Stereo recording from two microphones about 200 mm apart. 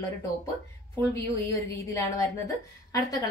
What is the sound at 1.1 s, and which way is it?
A woman's voice, 15° left (ahead or behind).